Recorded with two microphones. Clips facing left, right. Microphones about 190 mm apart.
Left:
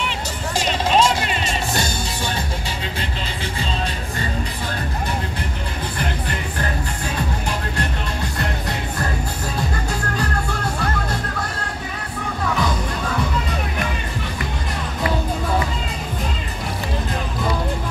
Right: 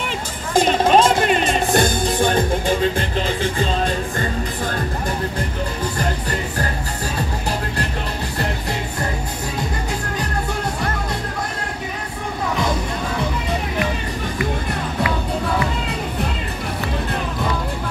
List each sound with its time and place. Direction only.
0.6 s music: 50° right (ahead or behind)